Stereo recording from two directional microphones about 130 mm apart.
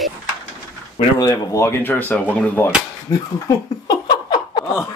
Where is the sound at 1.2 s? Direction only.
25° left (ahead or behind).